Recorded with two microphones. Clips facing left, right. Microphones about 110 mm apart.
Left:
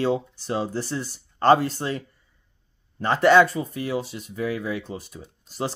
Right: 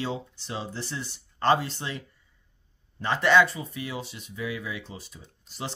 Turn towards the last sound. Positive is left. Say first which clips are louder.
# left 7 dB
turn(degrees=40)  # may be behind; listen again after turning